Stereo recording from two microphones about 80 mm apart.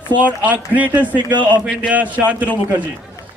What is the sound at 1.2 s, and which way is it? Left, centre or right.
Speech, right.